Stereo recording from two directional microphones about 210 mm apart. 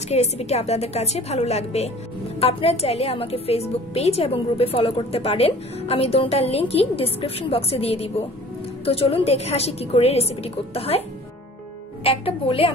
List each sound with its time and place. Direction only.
0.1 s a woman's voice: 30° left (ahead or behind)